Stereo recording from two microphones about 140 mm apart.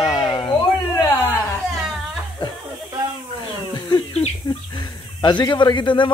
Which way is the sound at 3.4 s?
30° left (ahead or behind).